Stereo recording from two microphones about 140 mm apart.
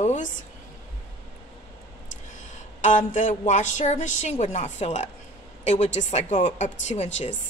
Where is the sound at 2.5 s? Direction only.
60° left (ahead or behind).